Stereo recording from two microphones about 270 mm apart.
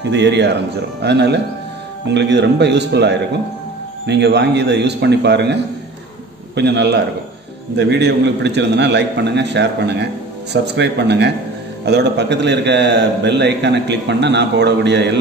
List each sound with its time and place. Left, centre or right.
0.0 s a man's voice: right